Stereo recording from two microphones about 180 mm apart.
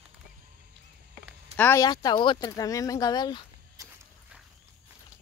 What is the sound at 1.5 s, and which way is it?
Speech, 10° left (ahead or behind).